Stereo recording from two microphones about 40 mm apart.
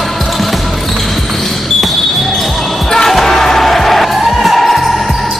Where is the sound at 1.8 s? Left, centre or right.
Centre.